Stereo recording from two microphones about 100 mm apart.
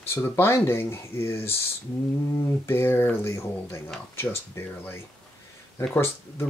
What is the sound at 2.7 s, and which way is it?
Speech, 20° left (ahead or behind).